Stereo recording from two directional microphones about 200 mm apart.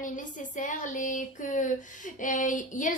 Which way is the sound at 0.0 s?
40° left (ahead or behind).